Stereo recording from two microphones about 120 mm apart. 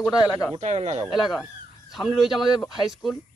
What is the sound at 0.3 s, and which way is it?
Speech, 30° left (ahead or behind).